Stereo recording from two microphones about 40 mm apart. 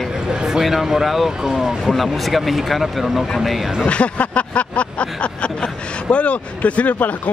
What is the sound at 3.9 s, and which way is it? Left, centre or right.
Speech, left.